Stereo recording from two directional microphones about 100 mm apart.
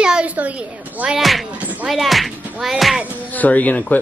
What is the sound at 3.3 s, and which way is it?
Speech, 15° left (ahead or behind).